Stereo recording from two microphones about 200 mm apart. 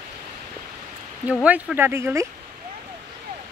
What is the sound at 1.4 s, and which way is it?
Speech, 5° right (ahead or behind).